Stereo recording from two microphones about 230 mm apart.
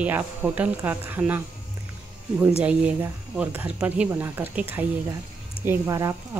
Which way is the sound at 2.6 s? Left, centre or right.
Centre.